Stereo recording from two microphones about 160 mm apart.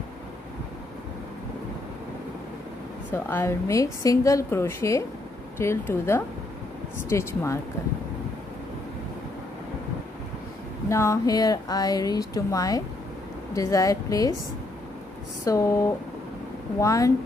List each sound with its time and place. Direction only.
3.1 s a woman's voice: 15° left (ahead or behind)
10.9 s a woman's voice: 20° left (ahead or behind)
15.4 s a woman's voice: 20° left (ahead or behind)